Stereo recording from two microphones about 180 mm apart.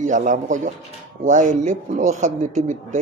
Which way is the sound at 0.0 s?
45° right (ahead or behind).